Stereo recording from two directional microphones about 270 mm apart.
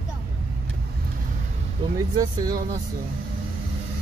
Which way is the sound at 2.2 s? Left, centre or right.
Centre.